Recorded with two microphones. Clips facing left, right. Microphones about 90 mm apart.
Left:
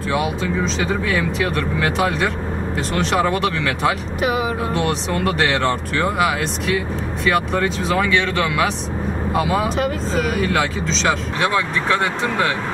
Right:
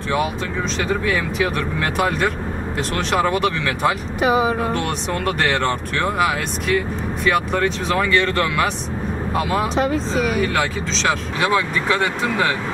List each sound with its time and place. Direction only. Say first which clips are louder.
0.7 s speech: even; centre (ahead or behind)